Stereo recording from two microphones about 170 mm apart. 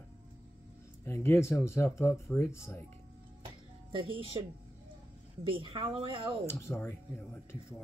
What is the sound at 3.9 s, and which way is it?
Speech, 30° right (ahead or behind).